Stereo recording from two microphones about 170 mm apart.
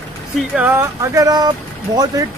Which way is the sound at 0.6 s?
15° right (ahead or behind).